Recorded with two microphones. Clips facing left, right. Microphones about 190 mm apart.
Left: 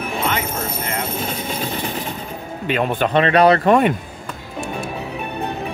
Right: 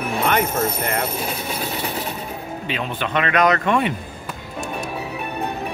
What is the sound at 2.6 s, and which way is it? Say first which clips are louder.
Speech: left 8 dB; 50° left (ahead or behind).